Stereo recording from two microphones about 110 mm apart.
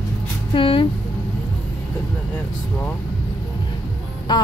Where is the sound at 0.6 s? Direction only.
50° left (ahead or behind).